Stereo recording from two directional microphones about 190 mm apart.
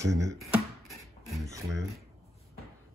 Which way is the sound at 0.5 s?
Centre (ahead or behind).